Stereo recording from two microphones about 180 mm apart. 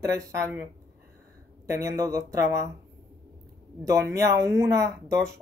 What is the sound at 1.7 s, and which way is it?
Speech, 15° right (ahead or behind).